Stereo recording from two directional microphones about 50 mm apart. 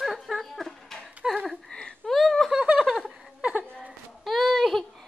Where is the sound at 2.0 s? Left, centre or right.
Centre.